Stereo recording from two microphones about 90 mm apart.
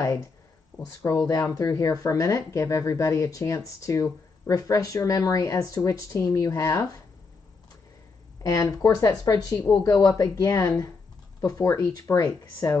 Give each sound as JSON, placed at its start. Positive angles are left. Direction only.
{"t": 1.0, "sound": "speech", "side_deg": 40}
{"t": 8.4, "sound": "speech", "side_deg": 40}